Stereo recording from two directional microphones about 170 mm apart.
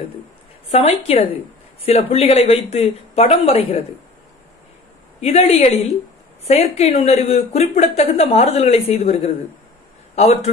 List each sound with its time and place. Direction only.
0.7 s speech: 35° left (ahead or behind)
5.2 s speech: 35° left (ahead or behind)